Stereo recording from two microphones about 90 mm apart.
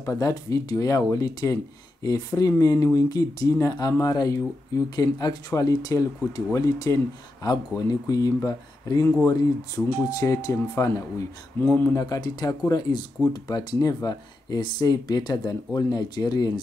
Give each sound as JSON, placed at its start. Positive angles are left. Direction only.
{"t": 0.0, "sound": "speech", "side_deg": 40}
{"t": 10.0, "sound": "speech", "side_deg": 40}
{"t": 11.6, "sound": "speech", "side_deg": 20}
{"t": 11.9, "sound": "speech", "side_deg": 45}